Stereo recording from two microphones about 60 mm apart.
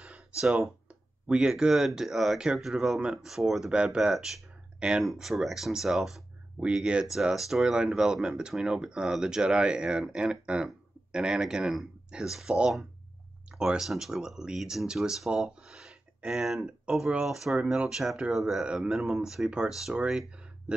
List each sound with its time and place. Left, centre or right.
0.0 s a sound: centre
1.2 s speech: centre
5.1 s speech: centre
13.6 s speech: centre